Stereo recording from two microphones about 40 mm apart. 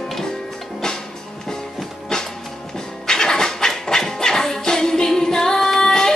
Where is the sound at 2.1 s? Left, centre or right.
Centre.